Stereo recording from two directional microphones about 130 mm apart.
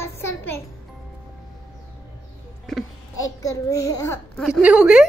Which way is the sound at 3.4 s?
25° left (ahead or behind).